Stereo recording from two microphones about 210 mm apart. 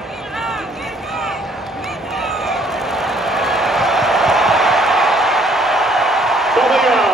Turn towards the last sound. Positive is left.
turn(degrees=0)  # may be behind; listen again after turning